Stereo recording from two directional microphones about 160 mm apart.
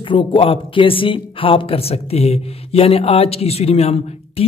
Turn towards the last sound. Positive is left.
turn(degrees=40)  # may be behind; listen again after turning